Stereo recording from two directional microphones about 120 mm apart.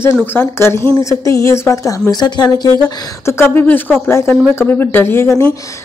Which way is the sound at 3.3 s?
20° left (ahead or behind).